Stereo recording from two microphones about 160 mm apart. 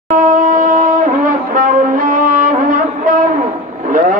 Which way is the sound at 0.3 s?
50° right (ahead or behind).